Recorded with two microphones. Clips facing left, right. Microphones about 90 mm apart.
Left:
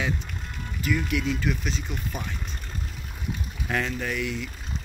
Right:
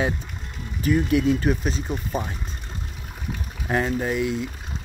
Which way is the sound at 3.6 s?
30° right (ahead or behind).